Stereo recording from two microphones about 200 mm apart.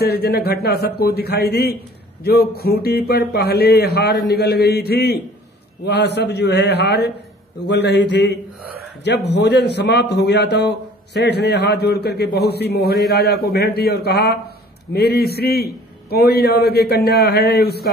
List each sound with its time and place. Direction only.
0.0 s a man's voice: 55° left (ahead or behind)
12.8 s a man's voice: centre (ahead or behind)
13.1 s a man's voice: 50° left (ahead or behind)